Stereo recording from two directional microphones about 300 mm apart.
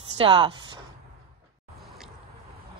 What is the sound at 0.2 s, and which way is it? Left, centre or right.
Speech, centre.